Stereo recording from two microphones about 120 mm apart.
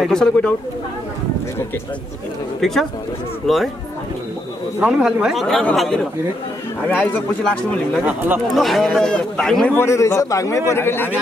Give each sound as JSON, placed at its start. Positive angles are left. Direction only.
{"t": 0.0, "sound": "speech", "side_deg": 5}
{"t": 2.6, "sound": "speech", "side_deg": 0}
{"t": 4.7, "sound": "speech", "side_deg": -10}
{"t": 6.9, "sound": "speech", "side_deg": 15}
{"t": 8.0, "sound": "speech", "side_deg": -15}
{"t": 8.5, "sound": "speech", "side_deg": 0}
{"t": 9.8, "sound": "a man's voice", "side_deg": 25}